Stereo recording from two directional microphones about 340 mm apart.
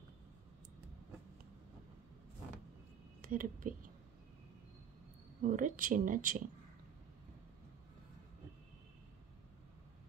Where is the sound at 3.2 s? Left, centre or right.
Right.